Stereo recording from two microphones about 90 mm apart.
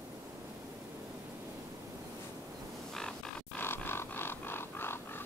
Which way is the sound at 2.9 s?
5° left (ahead or behind).